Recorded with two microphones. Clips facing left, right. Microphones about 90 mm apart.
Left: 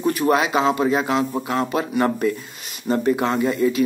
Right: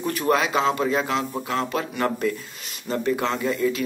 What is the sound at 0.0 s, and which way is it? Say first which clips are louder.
A man's voice: left 3 dB; 15° left (ahead or behind).